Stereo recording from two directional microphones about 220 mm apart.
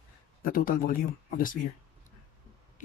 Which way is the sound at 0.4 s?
40° left (ahead or behind).